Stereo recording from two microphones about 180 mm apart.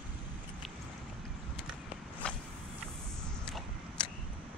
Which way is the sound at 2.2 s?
5° left (ahead or behind).